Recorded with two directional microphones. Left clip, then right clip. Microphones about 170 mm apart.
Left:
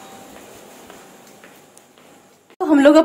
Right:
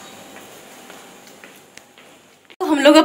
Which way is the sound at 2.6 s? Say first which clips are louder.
Even; 40° left (ahead or behind).